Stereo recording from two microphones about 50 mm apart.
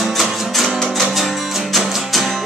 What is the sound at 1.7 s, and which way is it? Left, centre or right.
Music, centre.